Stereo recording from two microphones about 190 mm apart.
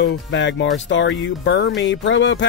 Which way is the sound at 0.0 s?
70° left (ahead or behind).